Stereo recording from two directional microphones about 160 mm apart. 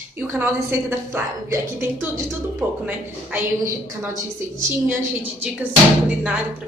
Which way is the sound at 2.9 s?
10° right (ahead or behind).